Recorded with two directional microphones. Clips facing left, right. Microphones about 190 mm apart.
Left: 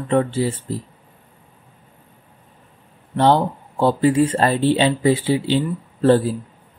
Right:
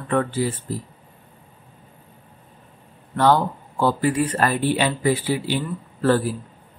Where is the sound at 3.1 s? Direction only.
25° left (ahead or behind).